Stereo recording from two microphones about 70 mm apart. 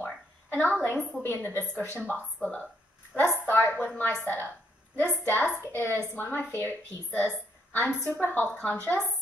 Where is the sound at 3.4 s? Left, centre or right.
Left.